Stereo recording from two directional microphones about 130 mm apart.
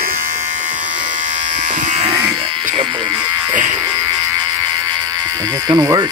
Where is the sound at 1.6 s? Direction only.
65° right (ahead or behind).